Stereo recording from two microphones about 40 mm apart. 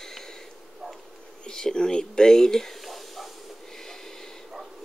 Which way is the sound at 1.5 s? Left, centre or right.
Centre.